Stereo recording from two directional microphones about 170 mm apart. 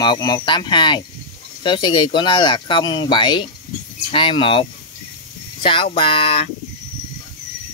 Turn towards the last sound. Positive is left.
turn(degrees=35)  # may be behind; listen again after turning